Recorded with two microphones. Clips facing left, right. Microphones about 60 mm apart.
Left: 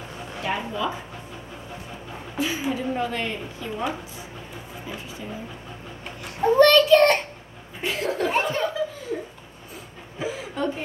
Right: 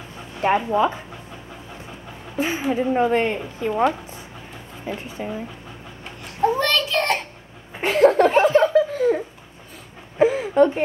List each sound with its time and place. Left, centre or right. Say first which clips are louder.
0.4 s a woman's voice: right 9 dB; right
2.3 s a woman's voice: right 4 dB; right
4.8 s a woman's voice: right 8 dB; right
6.4 s child singing: left 4 dB; centre
7.8 s laughter: right 11 dB; right
8.3 s speech: right 7 dB; centre
8.7 s a sound: right 11 dB; right
10.1 s speech: right 13 dB; right